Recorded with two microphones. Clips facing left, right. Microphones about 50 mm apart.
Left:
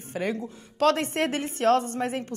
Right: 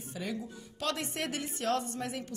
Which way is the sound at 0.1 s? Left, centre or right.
Left.